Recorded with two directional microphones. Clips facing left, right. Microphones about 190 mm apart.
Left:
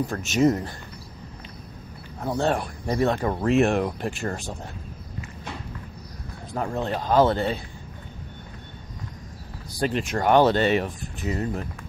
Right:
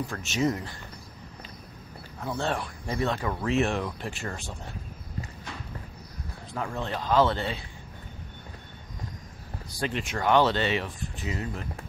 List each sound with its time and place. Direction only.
0.1 s speech: 45° left (ahead or behind)
2.1 s speech: 40° left (ahead or behind)
6.5 s speech: 40° left (ahead or behind)
9.8 s speech: 40° left (ahead or behind)